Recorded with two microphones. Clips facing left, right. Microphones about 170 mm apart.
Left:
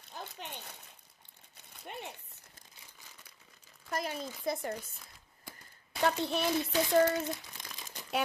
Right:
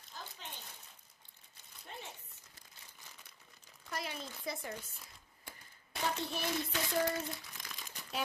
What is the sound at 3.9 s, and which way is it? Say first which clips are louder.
Speech: left 6 dB; 45° left (ahead or behind).